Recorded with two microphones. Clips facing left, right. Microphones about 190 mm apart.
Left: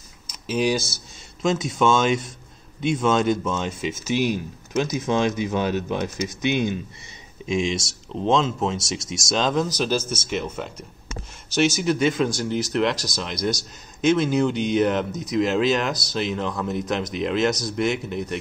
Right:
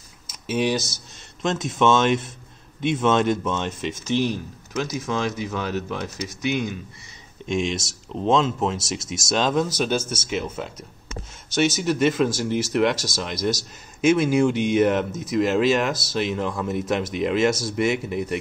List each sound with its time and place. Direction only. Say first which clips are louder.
0.3 s speech: left 1 dB; 5° right (ahead or behind)
4.7 s speech: left 4 dB; 20° left (ahead or behind)
7.4 s speech: left 1 dB; centre (ahead or behind)